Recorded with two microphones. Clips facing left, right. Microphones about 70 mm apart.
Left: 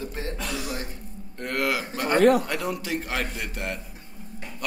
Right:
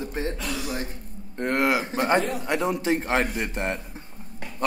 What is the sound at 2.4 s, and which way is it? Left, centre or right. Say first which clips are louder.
A man's voice: right 5 dB; right.